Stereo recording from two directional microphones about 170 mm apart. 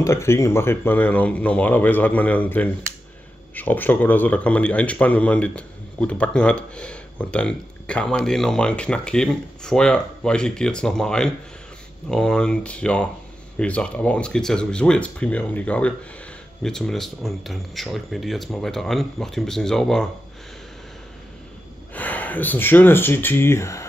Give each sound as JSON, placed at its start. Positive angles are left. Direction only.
{"t": 0.0, "sound": "speech", "side_deg": 15}
{"t": 21.9, "sound": "speech", "side_deg": 10}